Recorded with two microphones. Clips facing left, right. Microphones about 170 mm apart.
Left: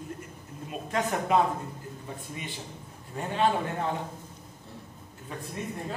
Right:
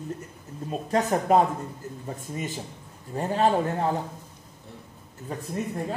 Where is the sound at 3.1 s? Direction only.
35° right (ahead or behind).